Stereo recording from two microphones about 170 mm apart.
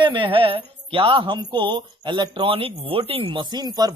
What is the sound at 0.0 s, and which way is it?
A man's voice, 30° right (ahead or behind).